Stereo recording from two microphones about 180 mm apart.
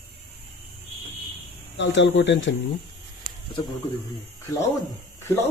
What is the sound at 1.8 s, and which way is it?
Speech, 90° left.